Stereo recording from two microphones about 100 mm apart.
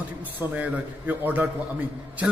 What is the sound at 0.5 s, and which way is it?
Speech, 15° right (ahead or behind).